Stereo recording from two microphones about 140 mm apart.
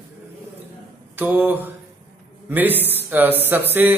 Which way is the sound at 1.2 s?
15° right (ahead or behind).